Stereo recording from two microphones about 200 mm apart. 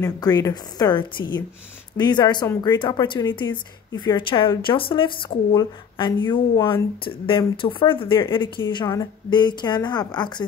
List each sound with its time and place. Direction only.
0.0 s speech: 20° left (ahead or behind)